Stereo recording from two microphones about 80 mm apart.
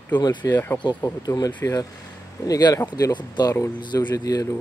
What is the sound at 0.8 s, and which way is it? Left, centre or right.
Speech, left.